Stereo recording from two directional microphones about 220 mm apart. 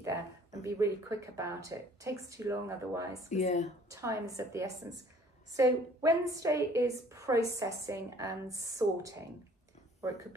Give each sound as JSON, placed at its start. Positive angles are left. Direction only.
{"t": 0.0, "sound": "a woman's voice", "side_deg": -15}
{"t": 3.3, "sound": "speech", "side_deg": 30}
{"t": 3.9, "sound": "a woman's voice", "side_deg": -15}